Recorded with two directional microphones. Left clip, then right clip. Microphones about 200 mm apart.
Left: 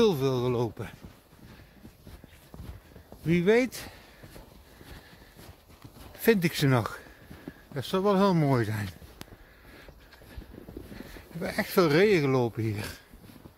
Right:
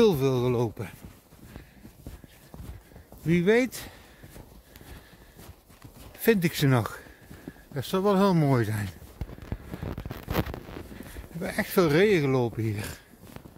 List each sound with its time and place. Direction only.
0.0 s speech: 25° right (ahead or behind)
3.3 s a sound: 10° right (ahead or behind)
6.2 s speech: 5° right (ahead or behind)
11.0 s speech: 5° right (ahead or behind)